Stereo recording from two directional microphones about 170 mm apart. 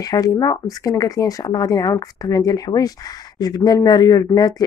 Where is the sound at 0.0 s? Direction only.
20° left (ahead or behind).